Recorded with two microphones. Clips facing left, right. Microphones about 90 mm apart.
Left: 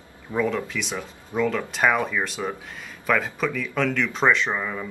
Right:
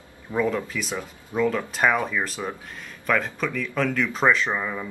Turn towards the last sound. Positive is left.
turn(degrees=-5)  # may be behind; listen again after turning